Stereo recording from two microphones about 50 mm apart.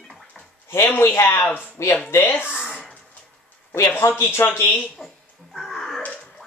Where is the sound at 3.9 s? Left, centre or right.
Left.